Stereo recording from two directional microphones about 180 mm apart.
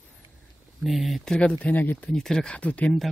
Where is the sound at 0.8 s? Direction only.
Centre (ahead or behind).